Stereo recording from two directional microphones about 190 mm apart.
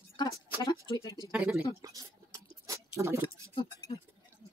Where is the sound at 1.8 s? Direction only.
20° right (ahead or behind).